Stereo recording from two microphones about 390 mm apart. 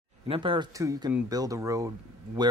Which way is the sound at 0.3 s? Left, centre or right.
Centre.